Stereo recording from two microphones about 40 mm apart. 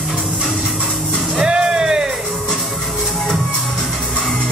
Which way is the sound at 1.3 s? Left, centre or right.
Right.